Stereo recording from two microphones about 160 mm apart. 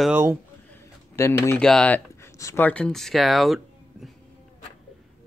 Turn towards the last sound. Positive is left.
turn(degrees=0)  # may be behind; listen again after turning